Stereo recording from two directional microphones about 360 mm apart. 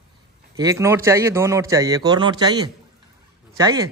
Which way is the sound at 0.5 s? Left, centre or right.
Centre.